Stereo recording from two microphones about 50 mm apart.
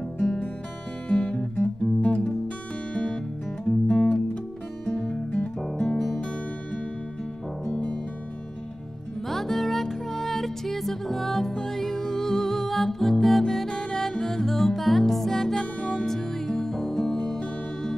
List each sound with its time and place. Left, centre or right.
1.0 s music: left
5.6 s music: centre
9.3 s music: centre